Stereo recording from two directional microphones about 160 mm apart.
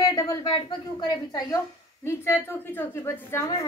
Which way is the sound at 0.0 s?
25° left (ahead or behind).